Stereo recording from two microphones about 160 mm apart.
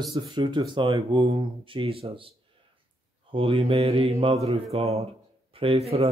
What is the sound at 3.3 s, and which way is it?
Speech, 35° right (ahead or behind).